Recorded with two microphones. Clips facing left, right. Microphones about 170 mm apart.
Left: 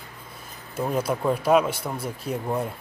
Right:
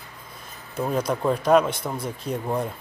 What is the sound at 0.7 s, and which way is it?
Speech, 5° left (ahead or behind).